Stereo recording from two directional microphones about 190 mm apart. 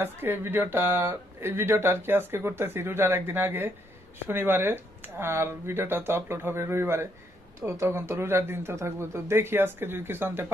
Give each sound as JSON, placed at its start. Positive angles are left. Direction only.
{"t": 0.0, "sound": "speech", "side_deg": -10}